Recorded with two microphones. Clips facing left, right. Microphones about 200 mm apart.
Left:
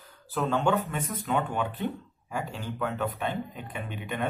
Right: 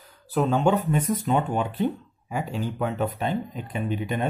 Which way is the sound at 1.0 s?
15° right (ahead or behind).